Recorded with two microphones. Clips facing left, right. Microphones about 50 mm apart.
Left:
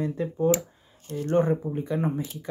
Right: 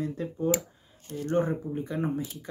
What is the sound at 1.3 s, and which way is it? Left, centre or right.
Speech, left.